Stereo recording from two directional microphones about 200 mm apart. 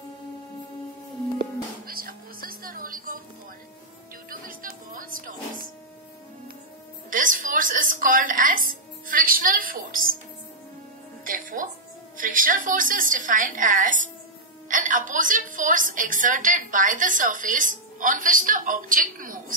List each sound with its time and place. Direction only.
1.9 s a sound: 45° right (ahead or behind)
4.3 s music: 45° right (ahead or behind)
7.1 s music: 45° right (ahead or behind)
11.2 s music: 40° right (ahead or behind)
12.2 s a woman's voice: 45° right (ahead or behind)